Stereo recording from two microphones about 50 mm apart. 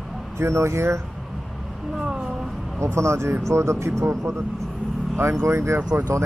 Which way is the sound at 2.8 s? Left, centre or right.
Right.